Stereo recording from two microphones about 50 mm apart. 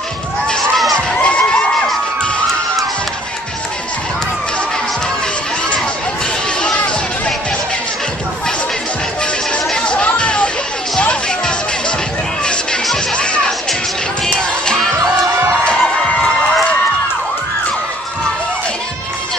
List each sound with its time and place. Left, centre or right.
0.9 s crowd: left
9.2 s music: centre
13.1 s music: centre
15.6 s music: centre